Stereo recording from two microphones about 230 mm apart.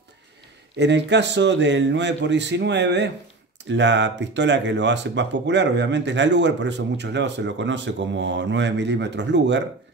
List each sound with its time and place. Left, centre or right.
0.7 s speech: right